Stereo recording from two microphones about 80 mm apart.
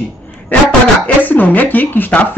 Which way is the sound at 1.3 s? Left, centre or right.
Left.